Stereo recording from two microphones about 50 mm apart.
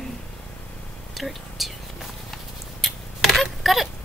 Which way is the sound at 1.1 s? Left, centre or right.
Centre.